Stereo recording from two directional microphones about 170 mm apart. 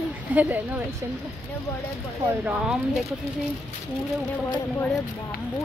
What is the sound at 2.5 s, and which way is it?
Speech, 5° right (ahead or behind).